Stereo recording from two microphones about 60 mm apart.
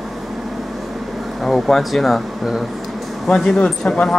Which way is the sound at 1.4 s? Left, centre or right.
Centre.